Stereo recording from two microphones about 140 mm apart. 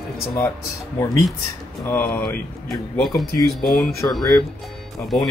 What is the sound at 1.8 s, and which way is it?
Speech, 15° left (ahead or behind).